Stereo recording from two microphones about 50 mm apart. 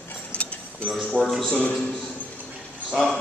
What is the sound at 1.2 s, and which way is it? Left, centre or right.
Speech, centre.